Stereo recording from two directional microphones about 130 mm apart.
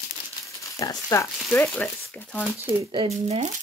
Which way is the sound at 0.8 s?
25° left (ahead or behind).